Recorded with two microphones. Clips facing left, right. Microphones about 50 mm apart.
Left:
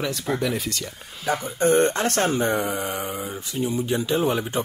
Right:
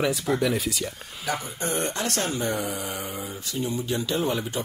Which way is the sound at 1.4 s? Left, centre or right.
Left.